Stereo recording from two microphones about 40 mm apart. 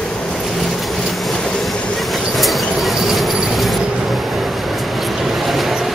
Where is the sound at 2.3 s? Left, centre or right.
Centre.